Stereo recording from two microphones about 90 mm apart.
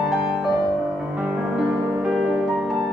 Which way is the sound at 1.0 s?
15° right (ahead or behind).